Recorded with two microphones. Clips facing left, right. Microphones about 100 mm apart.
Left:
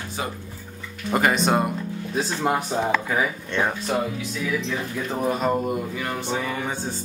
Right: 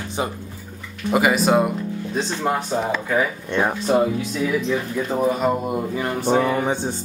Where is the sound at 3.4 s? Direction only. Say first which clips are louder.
Right 4 dB; 15° right (ahead or behind).